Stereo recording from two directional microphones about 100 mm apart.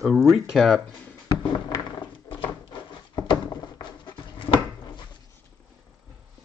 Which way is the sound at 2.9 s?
50° left (ahead or behind).